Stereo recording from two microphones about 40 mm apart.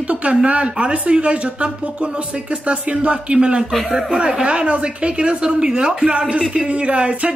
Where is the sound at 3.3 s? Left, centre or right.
Centre.